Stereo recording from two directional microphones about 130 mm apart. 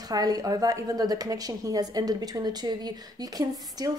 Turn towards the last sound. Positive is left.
turn(degrees=-30)  # may be behind; listen again after turning